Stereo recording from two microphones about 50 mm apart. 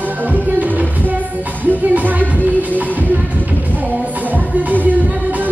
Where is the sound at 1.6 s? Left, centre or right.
Right.